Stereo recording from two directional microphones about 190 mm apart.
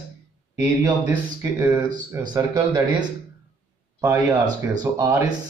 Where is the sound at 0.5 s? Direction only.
10° right (ahead or behind).